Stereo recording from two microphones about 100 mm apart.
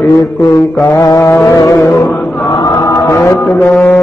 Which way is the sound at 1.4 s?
35° left (ahead or behind).